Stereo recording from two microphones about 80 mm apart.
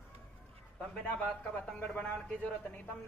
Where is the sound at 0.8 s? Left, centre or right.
Centre.